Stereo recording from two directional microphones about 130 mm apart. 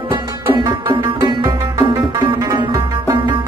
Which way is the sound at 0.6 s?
35° right (ahead or behind).